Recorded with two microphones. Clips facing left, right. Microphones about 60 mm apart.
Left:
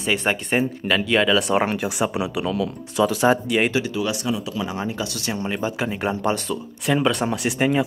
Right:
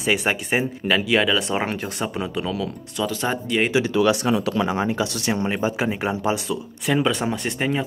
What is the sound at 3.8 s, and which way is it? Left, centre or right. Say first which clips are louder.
Speech: right 5 dB; right.